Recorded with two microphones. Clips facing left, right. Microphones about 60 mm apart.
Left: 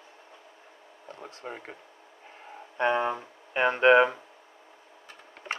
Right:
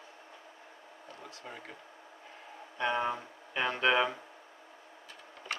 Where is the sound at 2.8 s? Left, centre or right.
Left.